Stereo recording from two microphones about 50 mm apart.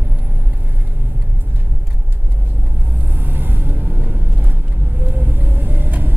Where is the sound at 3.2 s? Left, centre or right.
Right.